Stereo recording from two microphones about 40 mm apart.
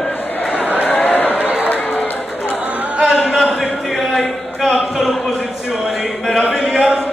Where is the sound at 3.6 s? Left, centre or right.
Centre.